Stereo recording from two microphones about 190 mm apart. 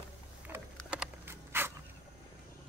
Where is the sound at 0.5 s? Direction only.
10° right (ahead or behind).